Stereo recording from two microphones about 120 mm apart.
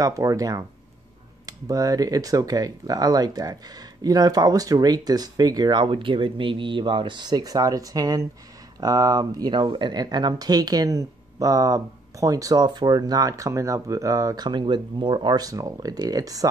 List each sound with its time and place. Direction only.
0.0 s speech: 25° right (ahead or behind)